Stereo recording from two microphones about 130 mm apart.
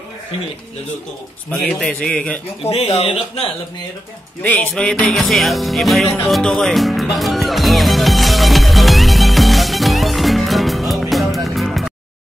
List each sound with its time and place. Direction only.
1.5 s a man's voice: 5° left (ahead or behind)
2.6 s speech: 55° left (ahead or behind)
4.4 s music: 10° left (ahead or behind)